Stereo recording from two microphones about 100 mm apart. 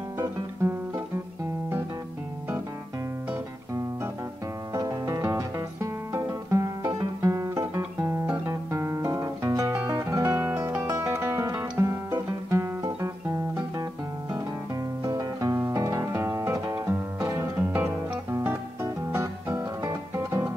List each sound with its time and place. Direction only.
0.2 s music: 25° right (ahead or behind)
4.7 s music: 35° right (ahead or behind)
11.8 s guitar: 30° right (ahead or behind)
15.0 s music: 40° right (ahead or behind)
15.5 s guitar: 30° right (ahead or behind)
16.7 s music: 30° right (ahead or behind)